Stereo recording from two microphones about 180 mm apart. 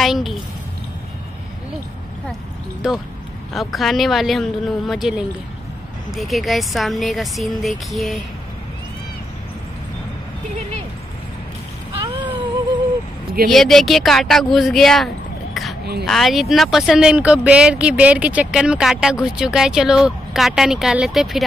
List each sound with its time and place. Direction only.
0.0 s a woman's voice: centre (ahead or behind)
2.8 s speech: 5° right (ahead or behind)
11.9 s a sound: 25° right (ahead or behind)
13.5 s speech: centre (ahead or behind)
16.1 s speech: centre (ahead or behind)